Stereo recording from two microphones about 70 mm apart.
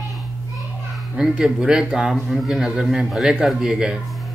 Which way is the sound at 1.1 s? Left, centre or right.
Centre.